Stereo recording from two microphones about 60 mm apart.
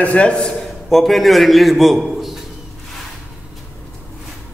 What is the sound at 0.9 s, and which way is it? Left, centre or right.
A man's voice, centre.